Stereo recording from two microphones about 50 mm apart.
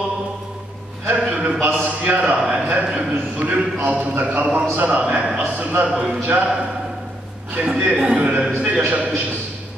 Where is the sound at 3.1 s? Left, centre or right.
Right.